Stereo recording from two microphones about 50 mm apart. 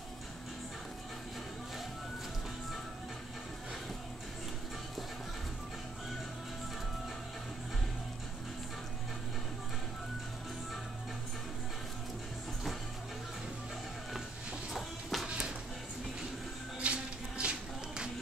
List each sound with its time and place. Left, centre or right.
14.7 s music: centre
15.2 s music: centre
16.8 s a sound: right